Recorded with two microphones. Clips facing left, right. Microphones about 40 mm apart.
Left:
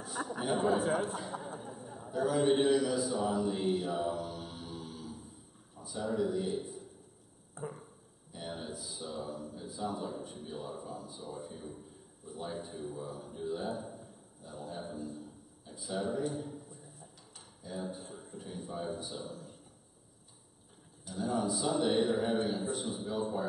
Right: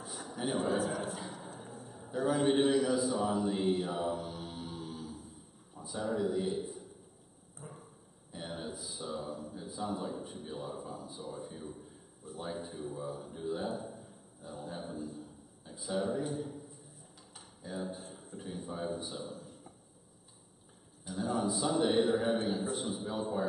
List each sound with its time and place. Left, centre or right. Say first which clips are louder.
0.2 s a sound: left 8 dB; left
0.6 s speech: left 3 dB; left
2.0 s a man's voice: left 1 dB; centre
3.5 s a man's voice: right 1 dB; centre
3.9 s mantra: left 1 dB; centre
5.8 s a man's voice: even; centre
7.6 s a sound: left 8 dB; left
8.5 s a sound: even; centre
9.6 s a man's voice: even; centre
17.6 s a man's voice: even; centre
21.1 s a man's voice: even; centre